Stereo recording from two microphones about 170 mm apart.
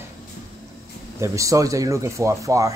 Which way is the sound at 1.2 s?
20° right (ahead or behind).